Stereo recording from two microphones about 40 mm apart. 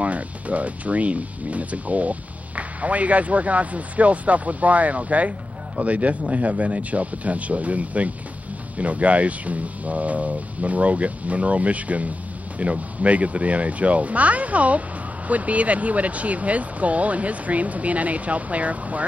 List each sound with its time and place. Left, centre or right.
0.0 s speech: right